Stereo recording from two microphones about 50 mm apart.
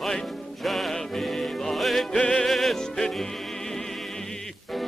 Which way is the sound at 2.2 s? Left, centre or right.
Centre.